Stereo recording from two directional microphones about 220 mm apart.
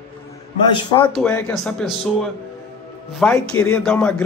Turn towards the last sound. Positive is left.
turn(degrees=5)  # may be behind; listen again after turning